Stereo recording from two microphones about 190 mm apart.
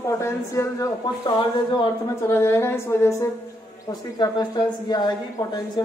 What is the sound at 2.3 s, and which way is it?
A man's voice, 15° left (ahead or behind).